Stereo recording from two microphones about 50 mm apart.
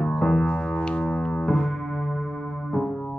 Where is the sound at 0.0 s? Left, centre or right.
Centre.